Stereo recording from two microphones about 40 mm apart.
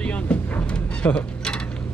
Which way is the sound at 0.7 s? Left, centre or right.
Left.